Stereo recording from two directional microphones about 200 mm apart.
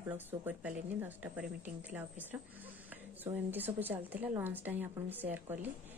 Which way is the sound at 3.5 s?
10° right (ahead or behind).